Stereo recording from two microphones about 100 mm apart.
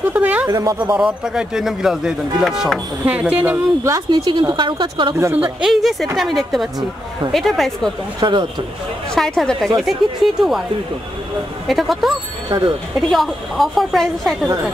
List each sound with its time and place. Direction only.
0.1 s speech: 15° right (ahead or behind)
0.5 s speech: 40° right (ahead or behind)
0.7 s speech: 10° right (ahead or behind)
3.8 s speech: 35° right (ahead or behind)
4.3 s a woman's voice: 50° right (ahead or behind)
5.1 s speech: 20° right (ahead or behind)
5.6 s speech: centre (ahead or behind)
8.2 s a woman's voice: 50° right (ahead or behind)
9.1 s speech: 5° left (ahead or behind)
11.6 s speech: centre (ahead or behind)
12.4 s speech: 50° right (ahead or behind)
13.1 s speech: centre (ahead or behind)